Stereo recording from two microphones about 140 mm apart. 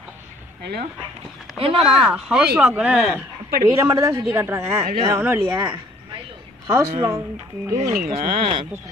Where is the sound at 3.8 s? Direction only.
20° right (ahead or behind).